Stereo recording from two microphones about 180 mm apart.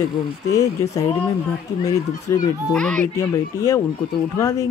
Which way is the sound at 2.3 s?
15° left (ahead or behind).